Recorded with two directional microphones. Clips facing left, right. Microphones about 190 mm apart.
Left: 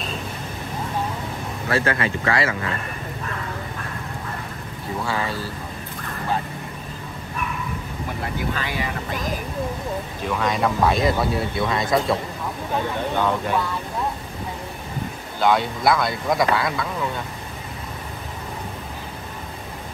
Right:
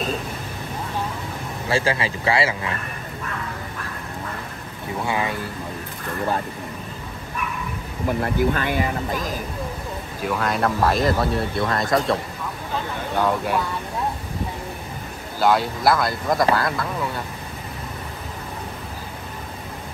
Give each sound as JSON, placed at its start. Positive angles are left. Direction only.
{"t": 1.7, "sound": "speech", "side_deg": -30}
{"t": 5.0, "sound": "speech", "side_deg": -20}
{"t": 8.2, "sound": "speech", "side_deg": -50}
{"t": 10.2, "sound": "speech", "side_deg": 0}
{"t": 15.4, "sound": "speech", "side_deg": 0}